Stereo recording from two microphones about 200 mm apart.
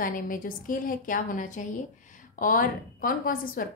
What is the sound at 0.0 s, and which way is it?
A woman's voice, 45° left (ahead or behind).